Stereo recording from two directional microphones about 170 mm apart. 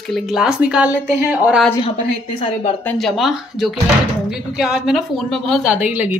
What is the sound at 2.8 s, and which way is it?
A woman's voice, 5° left (ahead or behind).